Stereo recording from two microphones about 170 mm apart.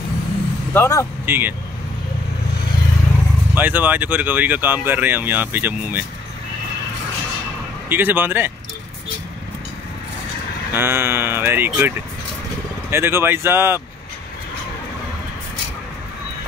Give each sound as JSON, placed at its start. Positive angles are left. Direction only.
{"t": 0.7, "sound": "speech", "side_deg": 20}
{"t": 1.2, "sound": "speech", "side_deg": -10}
{"t": 3.5, "sound": "speech", "side_deg": -10}
{"t": 7.9, "sound": "speech", "side_deg": -10}
{"t": 10.7, "sound": "speech", "side_deg": -15}
{"t": 12.9, "sound": "speech", "side_deg": -15}